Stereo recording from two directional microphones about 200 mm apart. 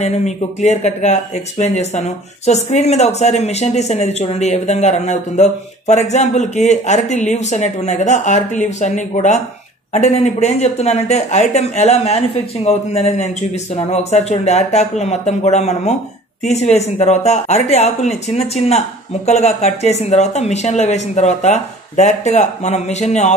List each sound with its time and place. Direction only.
0.0 s speech: 35° left (ahead or behind)